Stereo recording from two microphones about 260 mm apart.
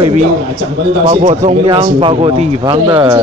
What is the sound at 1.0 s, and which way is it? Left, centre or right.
Speech, right.